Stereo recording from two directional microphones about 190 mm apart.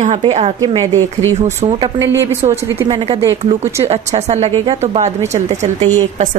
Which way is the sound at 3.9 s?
35° right (ahead or behind).